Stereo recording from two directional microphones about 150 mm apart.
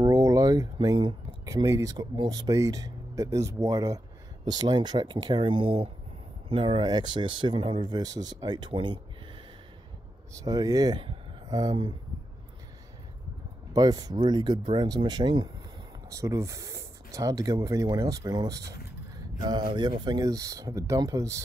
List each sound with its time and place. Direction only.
0.0 s speech: 25° right (ahead or behind)
10.3 s speech: 25° right (ahead or behind)
13.7 s speech: 25° right (ahead or behind)
19.1 s a sound: 25° right (ahead or behind)
19.7 s speech: 30° right (ahead or behind)